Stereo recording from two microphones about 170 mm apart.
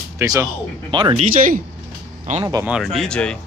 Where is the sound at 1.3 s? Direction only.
55° right (ahead or behind).